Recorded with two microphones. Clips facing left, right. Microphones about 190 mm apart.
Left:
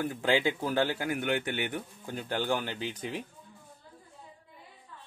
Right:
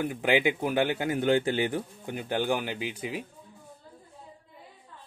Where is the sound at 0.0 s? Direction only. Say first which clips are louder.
Right 2 dB; 15° right (ahead or behind).